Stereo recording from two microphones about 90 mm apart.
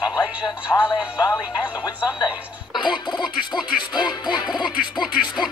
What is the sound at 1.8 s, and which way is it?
Speech, 50° left (ahead or behind).